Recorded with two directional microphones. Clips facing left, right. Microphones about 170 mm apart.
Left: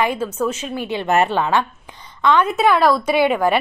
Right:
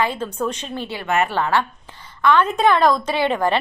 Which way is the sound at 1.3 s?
15° left (ahead or behind).